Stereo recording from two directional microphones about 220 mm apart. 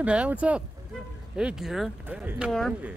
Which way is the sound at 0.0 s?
5° right (ahead or behind).